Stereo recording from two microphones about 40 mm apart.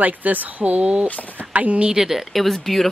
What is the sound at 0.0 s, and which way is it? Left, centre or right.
Speech, right.